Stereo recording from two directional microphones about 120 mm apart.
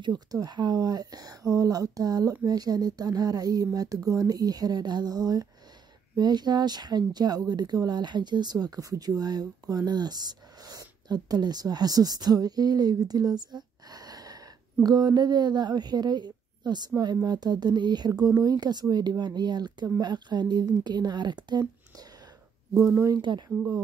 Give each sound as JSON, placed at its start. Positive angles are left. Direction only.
{"t": 0.0, "sound": "speech", "side_deg": -35}
{"t": 23.3, "sound": "speech", "side_deg": -40}